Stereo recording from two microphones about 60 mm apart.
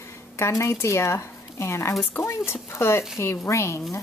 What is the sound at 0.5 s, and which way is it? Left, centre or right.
A woman's voice, left.